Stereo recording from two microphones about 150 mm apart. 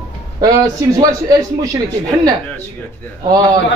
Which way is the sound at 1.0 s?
25° right (ahead or behind).